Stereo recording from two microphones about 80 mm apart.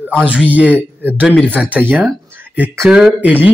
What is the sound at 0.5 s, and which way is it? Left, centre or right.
Speech, centre.